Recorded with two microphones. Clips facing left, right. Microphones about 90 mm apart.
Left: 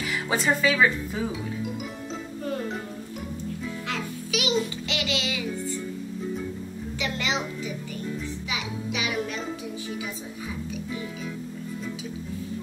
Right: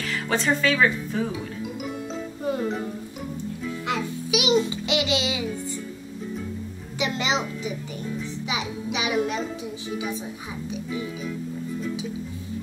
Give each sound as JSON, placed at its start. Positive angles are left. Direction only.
{"t": 0.0, "sound": "speech", "side_deg": 10}
{"t": 2.5, "sound": "music", "side_deg": -15}
{"t": 3.8, "sound": "music", "side_deg": -15}
{"t": 7.0, "sound": "music", "side_deg": -20}
{"t": 8.5, "sound": "a child's voice", "side_deg": -20}